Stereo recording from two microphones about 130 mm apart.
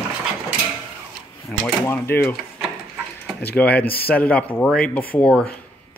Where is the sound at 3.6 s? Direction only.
10° left (ahead or behind).